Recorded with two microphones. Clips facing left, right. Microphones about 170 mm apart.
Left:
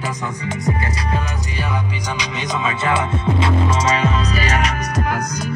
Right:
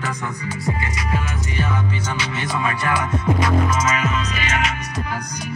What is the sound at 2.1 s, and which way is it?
Music, 20° left (ahead or behind).